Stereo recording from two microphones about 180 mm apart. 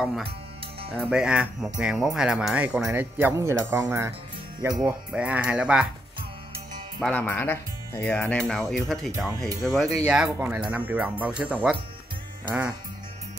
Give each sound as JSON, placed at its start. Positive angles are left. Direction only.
{"t": 0.0, "sound": "speech", "side_deg": 0}
{"t": 5.1, "sound": "speech", "side_deg": -5}
{"t": 7.0, "sound": "speech", "side_deg": 5}